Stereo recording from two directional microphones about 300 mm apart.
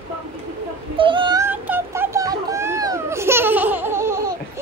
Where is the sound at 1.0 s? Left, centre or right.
Centre.